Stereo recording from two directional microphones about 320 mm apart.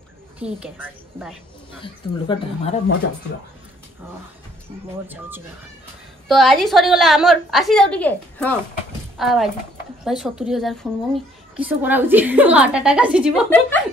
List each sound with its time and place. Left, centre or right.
0.4 s a woman's voice: centre
1.8 s a woman's voice: centre
5.0 s a woman's voice: centre